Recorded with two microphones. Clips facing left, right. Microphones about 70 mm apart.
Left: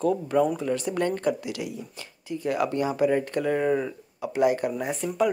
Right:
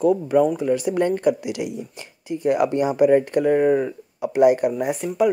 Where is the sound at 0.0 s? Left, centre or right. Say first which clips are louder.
Right 5 dB; centre.